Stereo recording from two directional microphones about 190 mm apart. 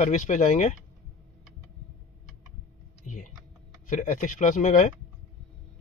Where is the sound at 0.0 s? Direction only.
40° left (ahead or behind).